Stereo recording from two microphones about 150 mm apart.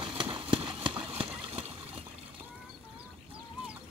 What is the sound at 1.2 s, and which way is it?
Water, 40° right (ahead or behind).